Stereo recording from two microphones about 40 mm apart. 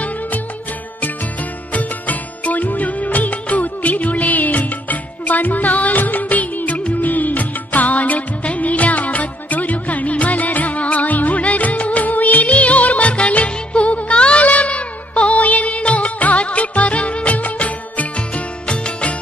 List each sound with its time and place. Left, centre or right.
1.7 s music of bollywood: left